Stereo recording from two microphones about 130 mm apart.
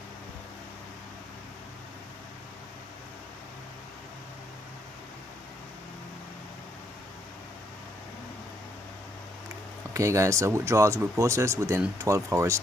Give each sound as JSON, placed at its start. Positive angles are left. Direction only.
{"t": 9.9, "sound": "speech", "side_deg": -25}